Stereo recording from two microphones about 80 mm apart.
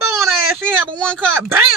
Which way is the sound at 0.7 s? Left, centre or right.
Centre.